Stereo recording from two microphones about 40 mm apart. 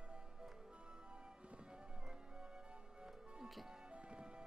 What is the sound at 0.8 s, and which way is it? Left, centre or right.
Music, right.